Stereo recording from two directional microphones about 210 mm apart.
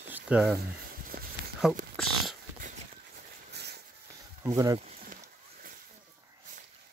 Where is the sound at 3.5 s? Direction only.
50° right (ahead or behind).